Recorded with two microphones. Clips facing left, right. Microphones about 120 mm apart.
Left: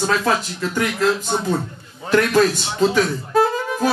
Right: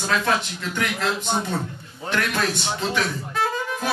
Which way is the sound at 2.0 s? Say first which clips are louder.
Left 9 dB; 40° left (ahead or behind).